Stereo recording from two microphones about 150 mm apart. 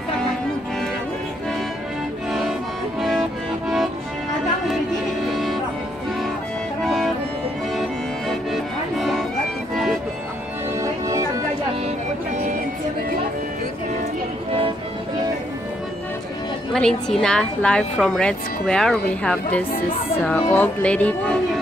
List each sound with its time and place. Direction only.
3.0 s accordion: centre (ahead or behind)
5.2 s music: centre (ahead or behind)
6.8 s music: centre (ahead or behind)
8.3 s music: centre (ahead or behind)
10.8 s music: 20° right (ahead or behind)
16.7 s a woman's voice: 5° left (ahead or behind)